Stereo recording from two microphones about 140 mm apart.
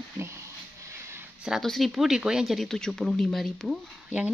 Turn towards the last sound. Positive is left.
turn(degrees=-10)  # may be behind; listen again after turning